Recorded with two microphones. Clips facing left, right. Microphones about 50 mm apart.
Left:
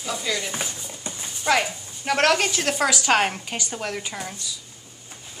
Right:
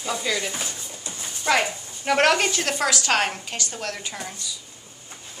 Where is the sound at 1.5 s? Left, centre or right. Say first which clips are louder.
Even; centre.